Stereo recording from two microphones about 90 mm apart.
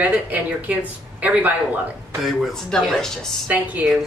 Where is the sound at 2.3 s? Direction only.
Centre (ahead or behind).